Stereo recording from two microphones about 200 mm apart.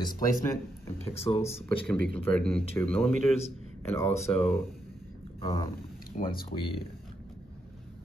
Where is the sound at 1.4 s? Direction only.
5° left (ahead or behind).